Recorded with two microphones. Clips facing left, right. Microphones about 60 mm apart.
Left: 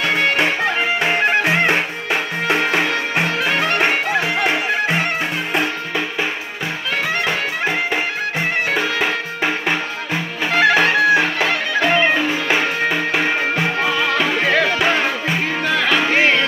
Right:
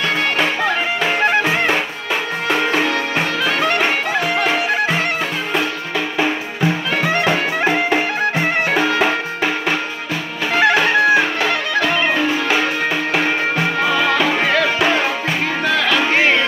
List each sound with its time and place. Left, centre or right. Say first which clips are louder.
3.2 s music: left 2 dB; left
4.5 s music: right 1 dB; centre
8.4 s music: even; centre
10.5 s music: even; centre